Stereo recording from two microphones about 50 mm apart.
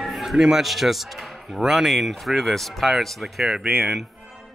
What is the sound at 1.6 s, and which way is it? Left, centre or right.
A man's voice, centre.